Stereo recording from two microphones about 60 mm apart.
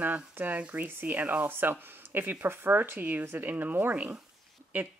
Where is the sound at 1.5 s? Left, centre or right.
Right.